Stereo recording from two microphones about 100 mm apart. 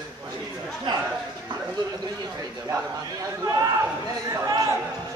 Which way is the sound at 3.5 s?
40° right (ahead or behind).